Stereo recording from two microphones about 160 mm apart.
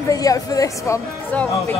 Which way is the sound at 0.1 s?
20° left (ahead or behind).